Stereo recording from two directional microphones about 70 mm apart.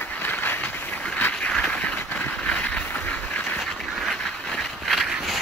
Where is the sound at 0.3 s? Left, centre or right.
Left.